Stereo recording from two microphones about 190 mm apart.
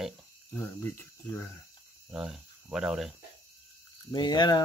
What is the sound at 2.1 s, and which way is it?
Speech, centre (ahead or behind).